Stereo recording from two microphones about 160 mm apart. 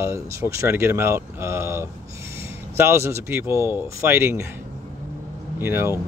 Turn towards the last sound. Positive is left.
turn(degrees=-15)  # may be behind; listen again after turning